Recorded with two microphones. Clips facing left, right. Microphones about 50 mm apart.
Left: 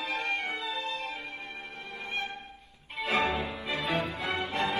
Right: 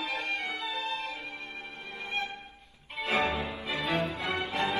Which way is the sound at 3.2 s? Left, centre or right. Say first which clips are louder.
Left 1 dB; left.